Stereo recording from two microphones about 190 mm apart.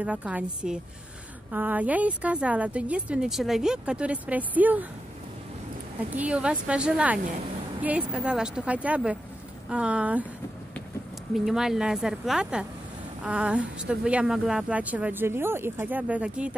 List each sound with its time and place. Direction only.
0.0 s speech: 5° right (ahead or behind)
6.1 s speech: 5° right (ahead or behind)
11.3 s speech: centre (ahead or behind)